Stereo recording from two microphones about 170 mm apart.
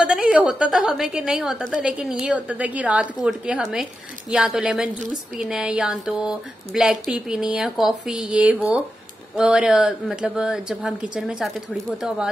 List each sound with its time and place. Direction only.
0.0 s a woman's voice: 5° right (ahead or behind)